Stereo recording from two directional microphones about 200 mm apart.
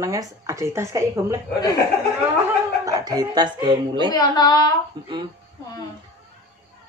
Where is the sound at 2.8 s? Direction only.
20° right (ahead or behind).